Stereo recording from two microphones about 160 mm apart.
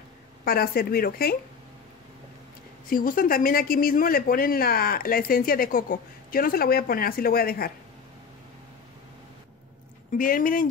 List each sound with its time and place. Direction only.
0.5 s speech: 70° left (ahead or behind)
2.9 s speech: 60° left (ahead or behind)
10.1 s speech: 60° left (ahead or behind)